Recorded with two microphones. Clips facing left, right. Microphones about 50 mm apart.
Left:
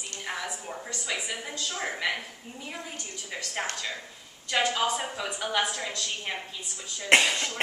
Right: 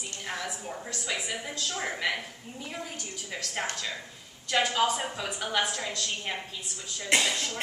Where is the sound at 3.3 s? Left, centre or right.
Centre.